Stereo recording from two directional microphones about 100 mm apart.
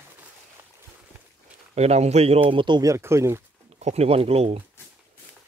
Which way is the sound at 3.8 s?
90° right.